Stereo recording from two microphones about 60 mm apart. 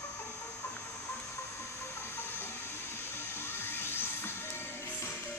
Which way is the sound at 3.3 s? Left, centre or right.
Left.